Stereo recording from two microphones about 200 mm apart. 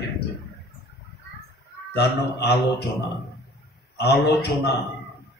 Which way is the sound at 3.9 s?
55° left (ahead or behind).